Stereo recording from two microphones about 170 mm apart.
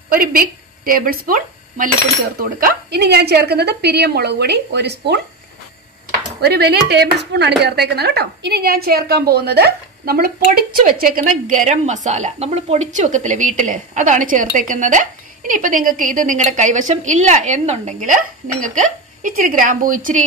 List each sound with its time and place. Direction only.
0.1 s a woman's voice: 60° right (ahead or behind); by 5.2 s 80° right
6.4 s a woman's voice: 70° right (ahead or behind); by 20.2 s 50° right (ahead or behind)